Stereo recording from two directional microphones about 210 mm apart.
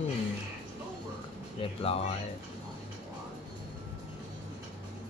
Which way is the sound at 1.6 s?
25° left (ahead or behind).